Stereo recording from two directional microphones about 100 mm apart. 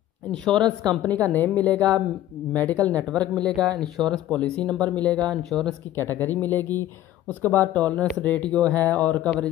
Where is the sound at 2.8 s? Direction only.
15° left (ahead or behind).